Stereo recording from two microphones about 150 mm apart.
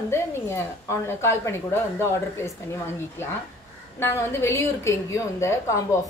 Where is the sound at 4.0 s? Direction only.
15° left (ahead or behind).